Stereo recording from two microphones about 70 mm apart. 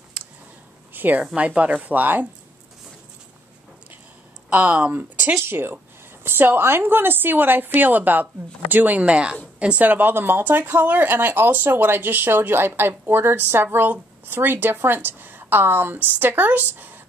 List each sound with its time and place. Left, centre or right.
0.2 s a sound: centre
0.9 s speech: right
1.2 s speech: centre
4.5 s speech: right